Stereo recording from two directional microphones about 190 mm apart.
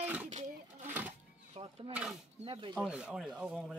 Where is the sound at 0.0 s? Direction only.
10° right (ahead or behind).